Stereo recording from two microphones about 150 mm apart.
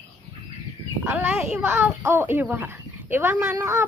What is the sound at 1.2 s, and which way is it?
Speech, 15° right (ahead or behind).